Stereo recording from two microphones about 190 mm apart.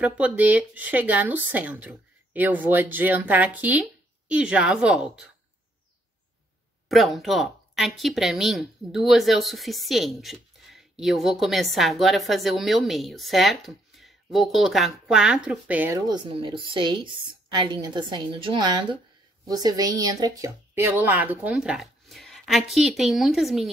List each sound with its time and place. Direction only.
0.0 s a woman's voice: 5° right (ahead or behind)
6.9 s a woman's voice: centre (ahead or behind)
16.1 s a woman's voice: 25° right (ahead or behind); by 23.7 s centre (ahead or behind)